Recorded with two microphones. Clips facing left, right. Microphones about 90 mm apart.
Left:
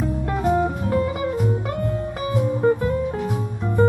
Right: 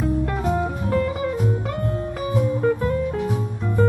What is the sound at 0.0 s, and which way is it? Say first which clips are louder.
Music: even; centre (ahead or behind).